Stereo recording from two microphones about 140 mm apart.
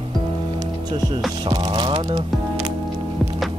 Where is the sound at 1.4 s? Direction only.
35° right (ahead or behind).